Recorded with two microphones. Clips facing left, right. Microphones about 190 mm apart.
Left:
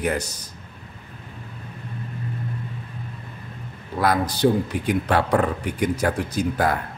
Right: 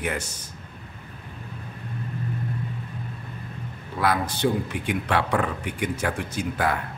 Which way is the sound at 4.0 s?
40° left (ahead or behind).